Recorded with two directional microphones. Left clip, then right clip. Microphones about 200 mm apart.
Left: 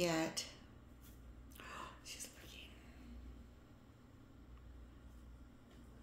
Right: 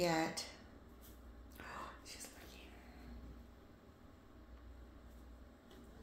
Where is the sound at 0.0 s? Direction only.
20° left (ahead or behind).